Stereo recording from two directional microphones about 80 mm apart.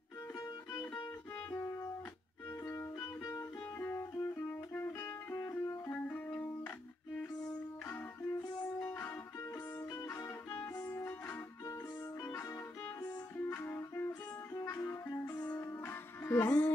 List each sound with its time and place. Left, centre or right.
1.5 s music: left; by 8.0 s centre
8.2 s music: left
13.4 s music: left